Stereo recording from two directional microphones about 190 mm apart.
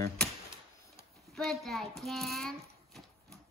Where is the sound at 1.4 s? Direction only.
Centre (ahead or behind).